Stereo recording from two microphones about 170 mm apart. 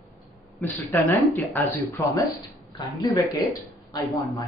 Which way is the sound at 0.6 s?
10° left (ahead or behind).